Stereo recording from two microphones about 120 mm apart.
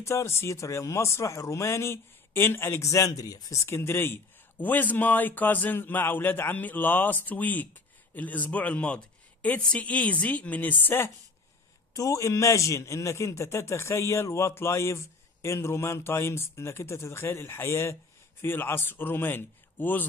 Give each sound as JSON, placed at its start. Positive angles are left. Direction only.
{"t": 0.0, "sound": "speech", "side_deg": 25}
{"t": 11.9, "sound": "speech", "side_deg": 30}